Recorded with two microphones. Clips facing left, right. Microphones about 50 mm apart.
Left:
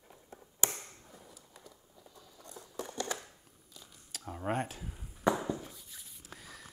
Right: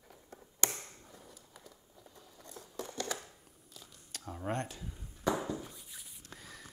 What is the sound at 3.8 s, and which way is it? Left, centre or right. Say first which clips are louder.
Crumpling: even; centre.